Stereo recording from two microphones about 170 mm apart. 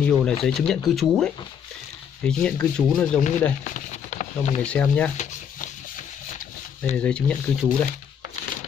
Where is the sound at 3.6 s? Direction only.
45° left (ahead or behind).